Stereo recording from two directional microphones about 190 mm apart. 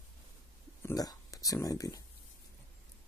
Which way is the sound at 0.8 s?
20° left (ahead or behind).